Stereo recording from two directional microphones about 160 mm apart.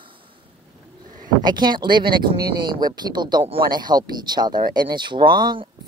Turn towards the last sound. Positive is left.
turn(degrees=-30)  # may be behind; listen again after turning